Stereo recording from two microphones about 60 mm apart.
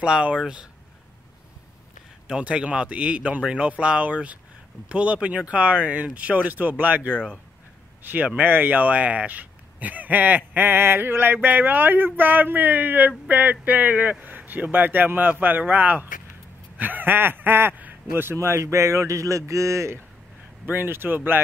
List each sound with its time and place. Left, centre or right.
0.0 s speech: centre
2.2 s a man's voice: centre; by 20.0 s right
20.6 s a man's voice: right